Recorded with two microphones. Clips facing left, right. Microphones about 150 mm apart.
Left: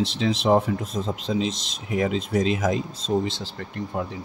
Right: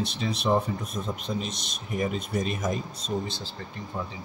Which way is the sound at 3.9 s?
65° left (ahead or behind).